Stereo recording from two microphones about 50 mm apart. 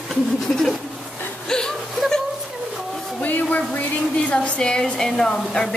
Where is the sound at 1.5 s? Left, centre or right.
Centre.